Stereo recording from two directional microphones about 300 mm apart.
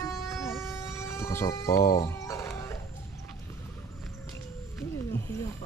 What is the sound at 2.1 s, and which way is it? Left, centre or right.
Music, centre.